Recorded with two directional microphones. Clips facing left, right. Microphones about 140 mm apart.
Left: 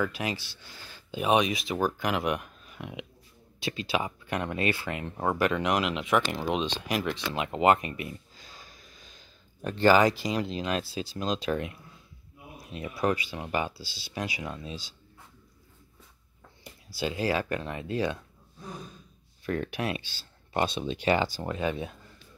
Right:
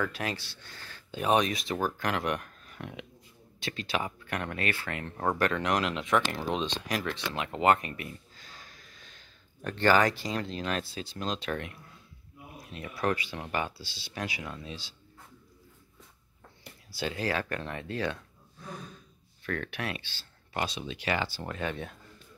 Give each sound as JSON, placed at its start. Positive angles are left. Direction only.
{"t": 0.0, "sound": "speech", "side_deg": 5}
{"t": 7.3, "sound": "a sound", "side_deg": 20}
{"t": 9.6, "sound": "speech", "side_deg": 15}
{"t": 16.9, "sound": "speech", "side_deg": 15}
{"t": 19.4, "sound": "speech", "side_deg": 15}
{"t": 20.5, "sound": "speech", "side_deg": 25}